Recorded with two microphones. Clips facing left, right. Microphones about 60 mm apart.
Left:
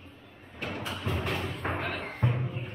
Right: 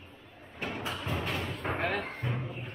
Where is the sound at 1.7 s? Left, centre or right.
Right.